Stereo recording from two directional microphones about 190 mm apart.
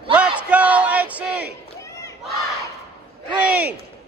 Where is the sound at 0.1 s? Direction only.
5° right (ahead or behind).